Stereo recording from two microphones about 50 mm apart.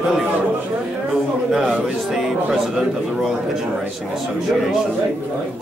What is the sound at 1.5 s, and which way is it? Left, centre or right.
Speech, centre.